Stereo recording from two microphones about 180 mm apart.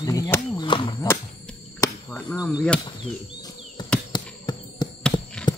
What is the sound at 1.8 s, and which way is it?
Cricket, 15° left (ahead or behind).